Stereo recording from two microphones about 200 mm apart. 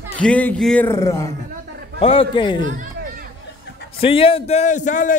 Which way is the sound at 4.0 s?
30° left (ahead or behind).